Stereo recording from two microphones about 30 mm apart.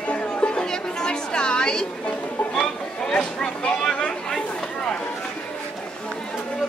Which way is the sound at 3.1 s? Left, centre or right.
Left.